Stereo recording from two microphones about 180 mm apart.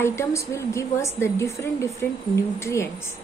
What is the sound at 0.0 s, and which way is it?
A woman's voice, 15° left (ahead or behind).